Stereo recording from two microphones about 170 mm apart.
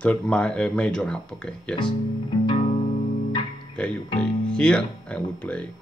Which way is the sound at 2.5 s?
45° left (ahead or behind).